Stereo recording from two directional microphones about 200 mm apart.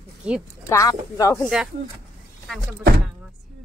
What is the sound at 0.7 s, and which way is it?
Speech, 15° left (ahead or behind).